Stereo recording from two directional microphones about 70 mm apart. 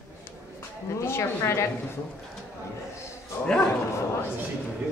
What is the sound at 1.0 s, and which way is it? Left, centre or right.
Speech, left.